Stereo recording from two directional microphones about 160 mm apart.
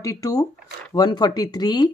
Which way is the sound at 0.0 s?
20° left (ahead or behind).